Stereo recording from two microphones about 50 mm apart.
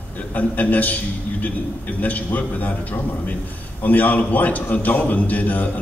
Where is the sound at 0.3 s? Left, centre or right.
Left.